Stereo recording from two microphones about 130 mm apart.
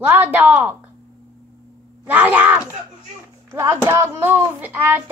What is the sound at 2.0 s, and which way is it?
A child's voice, 15° right (ahead or behind).